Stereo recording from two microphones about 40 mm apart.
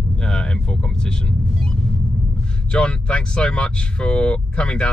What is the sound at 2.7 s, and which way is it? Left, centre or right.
Speech, left.